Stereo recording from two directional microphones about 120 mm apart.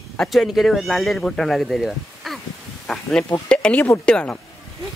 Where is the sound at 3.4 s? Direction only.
10° left (ahead or behind).